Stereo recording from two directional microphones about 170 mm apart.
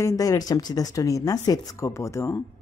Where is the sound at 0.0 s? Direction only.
20° left (ahead or behind).